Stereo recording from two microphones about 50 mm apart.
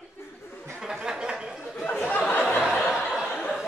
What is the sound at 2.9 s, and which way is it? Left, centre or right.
Laughter, centre.